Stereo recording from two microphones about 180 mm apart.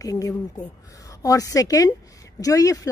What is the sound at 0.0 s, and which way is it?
A woman's voice, 20° left (ahead or behind).